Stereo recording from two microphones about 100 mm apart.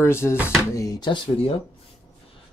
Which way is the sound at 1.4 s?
90° left.